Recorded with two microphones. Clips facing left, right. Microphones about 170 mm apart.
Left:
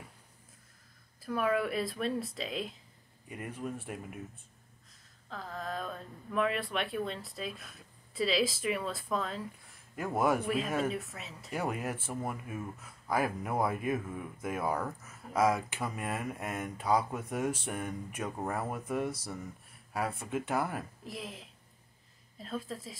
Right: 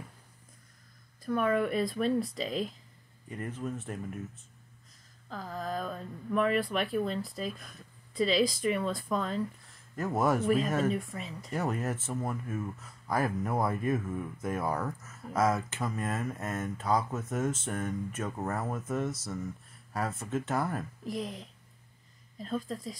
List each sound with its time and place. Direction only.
1.2 s speech: 5° left (ahead or behind)
5.3 s speech: centre (ahead or behind)